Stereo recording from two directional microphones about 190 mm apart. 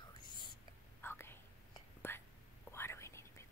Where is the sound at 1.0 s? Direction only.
10° left (ahead or behind).